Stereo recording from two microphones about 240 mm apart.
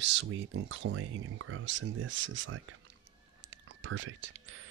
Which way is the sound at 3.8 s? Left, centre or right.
Right.